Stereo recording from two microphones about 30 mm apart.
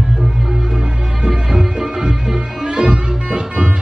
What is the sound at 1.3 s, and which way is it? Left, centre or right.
Music, centre.